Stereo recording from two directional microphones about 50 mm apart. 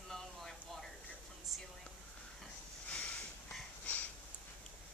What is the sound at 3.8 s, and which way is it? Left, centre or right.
Sniff, left.